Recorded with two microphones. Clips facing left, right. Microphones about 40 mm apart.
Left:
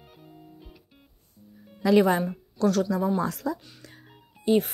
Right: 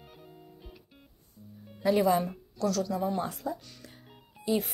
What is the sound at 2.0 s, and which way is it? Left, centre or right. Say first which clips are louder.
Speech: left 5 dB; left.